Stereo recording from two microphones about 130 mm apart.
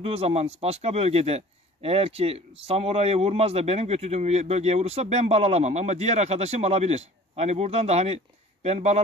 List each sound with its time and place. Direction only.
0.0 s a man's voice: 50° right (ahead or behind)